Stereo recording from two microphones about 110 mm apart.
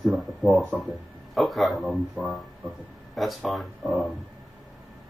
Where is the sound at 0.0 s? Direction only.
Centre (ahead or behind).